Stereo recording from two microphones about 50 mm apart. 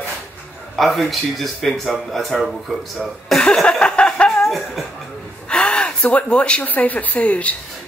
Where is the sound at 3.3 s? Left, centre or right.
Centre.